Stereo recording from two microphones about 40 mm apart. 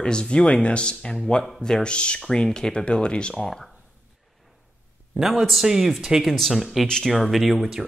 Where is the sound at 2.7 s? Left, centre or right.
Left.